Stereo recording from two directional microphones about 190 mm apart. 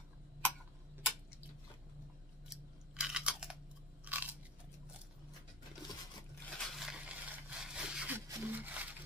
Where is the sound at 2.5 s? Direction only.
5° right (ahead or behind).